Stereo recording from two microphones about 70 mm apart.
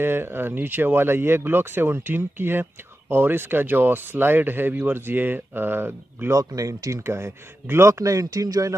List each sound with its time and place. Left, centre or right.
0.0 s speech: right
6.3 s speech: right